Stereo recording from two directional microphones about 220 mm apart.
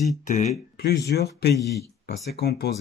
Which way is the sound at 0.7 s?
45° left (ahead or behind).